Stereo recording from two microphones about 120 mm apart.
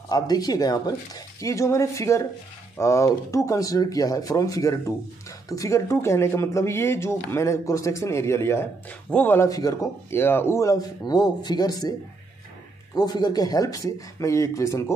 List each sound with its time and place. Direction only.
0.1 s speech: 30° left (ahead or behind); by 9.5 s 15° left (ahead or behind)
9.5 s speech: 30° left (ahead or behind)
12.9 s speech: 35° left (ahead or behind)